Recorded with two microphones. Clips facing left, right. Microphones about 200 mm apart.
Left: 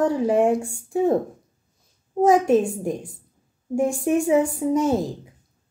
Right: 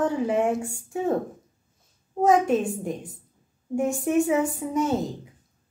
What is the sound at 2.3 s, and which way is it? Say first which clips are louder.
Speech: left 3 dB; 30° left (ahead or behind).